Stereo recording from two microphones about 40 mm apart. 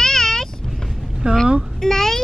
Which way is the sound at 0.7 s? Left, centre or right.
Centre.